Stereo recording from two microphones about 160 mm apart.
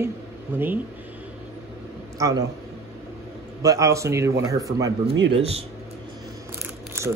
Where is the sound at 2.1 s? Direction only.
20° right (ahead or behind).